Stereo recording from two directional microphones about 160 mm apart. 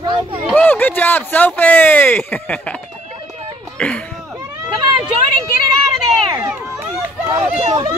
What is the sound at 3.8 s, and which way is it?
Speech, 5° left (ahead or behind).